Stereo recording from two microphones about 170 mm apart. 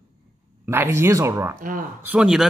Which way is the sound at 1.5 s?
55° right (ahead or behind).